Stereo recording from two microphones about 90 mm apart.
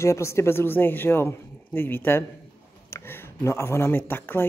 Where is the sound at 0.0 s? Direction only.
30° left (ahead or behind).